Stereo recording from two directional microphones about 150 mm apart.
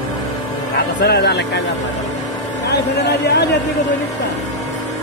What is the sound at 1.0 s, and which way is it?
Speech, 90° left.